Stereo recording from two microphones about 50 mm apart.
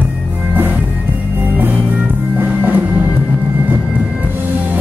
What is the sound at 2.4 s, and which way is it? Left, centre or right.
Music, right.